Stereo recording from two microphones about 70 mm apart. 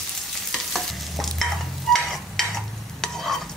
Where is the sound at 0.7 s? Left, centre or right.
Centre.